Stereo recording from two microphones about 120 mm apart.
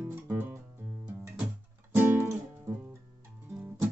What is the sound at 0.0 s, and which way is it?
Music, 15° right (ahead or behind).